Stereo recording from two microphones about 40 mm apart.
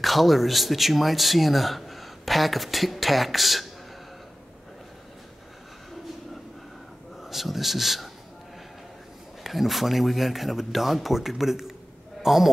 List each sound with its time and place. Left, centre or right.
0.0 s speech: centre
7.2 s speech: centre
9.4 s speech: centre